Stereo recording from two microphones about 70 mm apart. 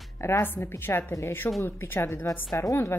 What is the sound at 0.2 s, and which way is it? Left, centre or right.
A woman's voice, left.